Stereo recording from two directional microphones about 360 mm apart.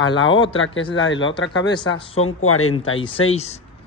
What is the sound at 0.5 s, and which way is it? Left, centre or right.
Speech, left.